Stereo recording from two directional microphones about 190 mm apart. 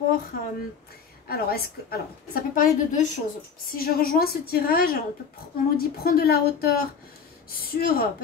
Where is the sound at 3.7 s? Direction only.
50° left (ahead or behind).